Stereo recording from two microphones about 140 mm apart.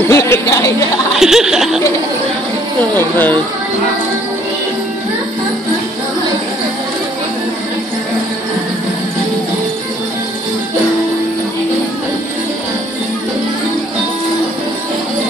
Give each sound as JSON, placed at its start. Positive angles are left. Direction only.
{"t": 0.1, "sound": "speech", "side_deg": 20}
{"t": 1.1, "sound": "chuckle", "side_deg": -5}
{"t": 2.9, "sound": "speech", "side_deg": 15}